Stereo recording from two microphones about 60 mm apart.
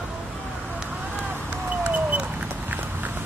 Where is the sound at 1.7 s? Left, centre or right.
Right.